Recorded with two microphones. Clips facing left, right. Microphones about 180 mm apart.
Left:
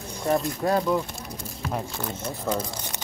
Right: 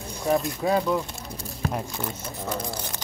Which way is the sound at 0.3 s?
Centre (ahead or behind).